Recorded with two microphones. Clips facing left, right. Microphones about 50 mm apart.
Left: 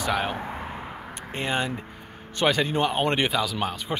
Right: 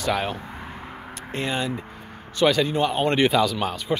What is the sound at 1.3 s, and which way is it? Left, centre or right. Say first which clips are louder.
Speech: right 1 dB; left.